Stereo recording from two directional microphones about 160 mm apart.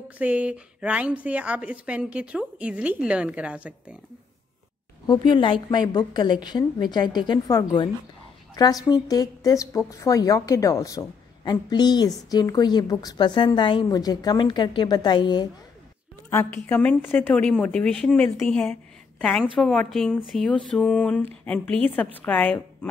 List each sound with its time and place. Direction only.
0.2 s a woman's voice: 10° right (ahead or behind)
5.0 s a woman's voice: 30° left (ahead or behind)
16.3 s speech: 15° left (ahead or behind)